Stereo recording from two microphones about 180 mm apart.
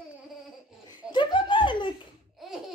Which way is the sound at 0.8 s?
25° left (ahead or behind).